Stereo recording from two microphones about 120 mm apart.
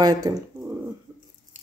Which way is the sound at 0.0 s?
30° right (ahead or behind).